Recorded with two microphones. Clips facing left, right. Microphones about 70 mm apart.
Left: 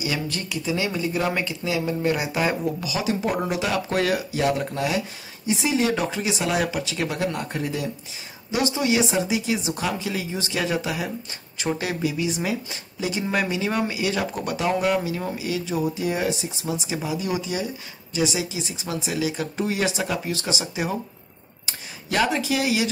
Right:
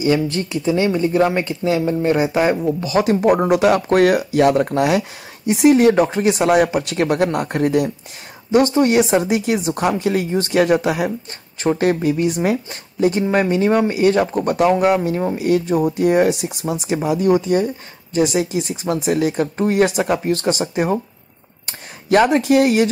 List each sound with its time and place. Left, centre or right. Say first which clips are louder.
0.0 s speech: right 10 dB; right
2.9 s speech: right 12 dB; right
11.8 s speech: right 11 dB; right
13.3 s speech: right 9 dB; right
19.4 s speech: right 8 dB; right